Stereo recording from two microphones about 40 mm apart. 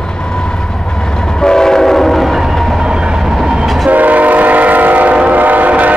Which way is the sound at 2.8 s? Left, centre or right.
Centre.